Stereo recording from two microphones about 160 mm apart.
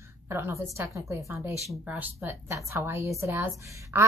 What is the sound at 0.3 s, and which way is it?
A woman's voice, 15° right (ahead or behind).